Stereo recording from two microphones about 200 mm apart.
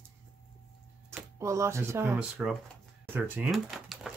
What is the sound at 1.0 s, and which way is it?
Speech, 15° right (ahead or behind).